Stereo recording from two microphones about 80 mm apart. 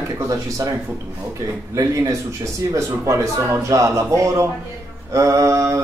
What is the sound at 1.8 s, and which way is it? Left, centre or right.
Speech, right.